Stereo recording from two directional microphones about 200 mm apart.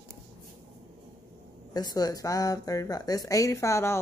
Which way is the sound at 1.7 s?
20° left (ahead or behind).